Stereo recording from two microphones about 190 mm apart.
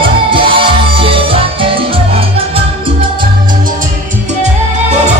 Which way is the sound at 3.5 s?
45° right (ahead or behind).